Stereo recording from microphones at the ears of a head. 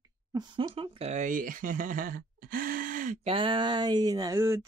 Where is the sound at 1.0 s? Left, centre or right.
Right.